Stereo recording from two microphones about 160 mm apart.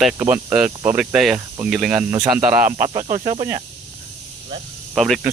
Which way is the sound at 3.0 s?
35° right (ahead or behind).